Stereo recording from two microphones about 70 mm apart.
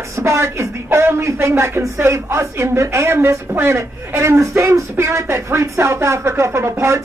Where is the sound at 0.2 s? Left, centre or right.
Right.